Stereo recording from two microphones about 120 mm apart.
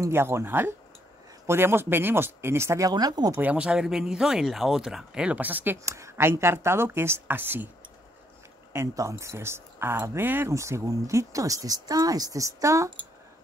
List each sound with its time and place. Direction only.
0.0 s speech: 20° right (ahead or behind)
2.9 s speech: 35° right (ahead or behind)
3.3 s speech: 10° right (ahead or behind)
8.7 s speech: 25° right (ahead or behind)